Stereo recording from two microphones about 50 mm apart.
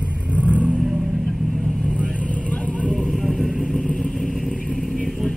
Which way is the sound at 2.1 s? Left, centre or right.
Left.